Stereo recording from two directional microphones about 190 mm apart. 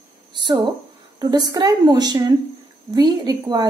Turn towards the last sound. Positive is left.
turn(degrees=-20)  # may be behind; listen again after turning